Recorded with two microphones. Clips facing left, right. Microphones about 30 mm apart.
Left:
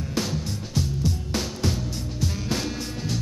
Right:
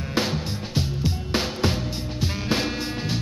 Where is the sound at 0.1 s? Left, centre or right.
Right.